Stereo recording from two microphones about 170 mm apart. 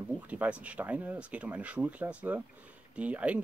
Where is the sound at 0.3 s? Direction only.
10° right (ahead or behind).